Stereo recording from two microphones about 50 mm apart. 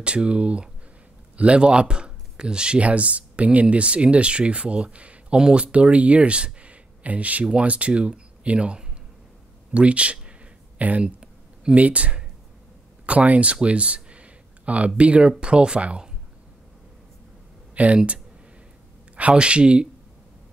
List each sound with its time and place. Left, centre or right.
0.0 s speech: right
10.8 s a sound: right
11.7 s speech: right
13.0 s a sound: right
15.0 s speech: right
17.7 s speech: right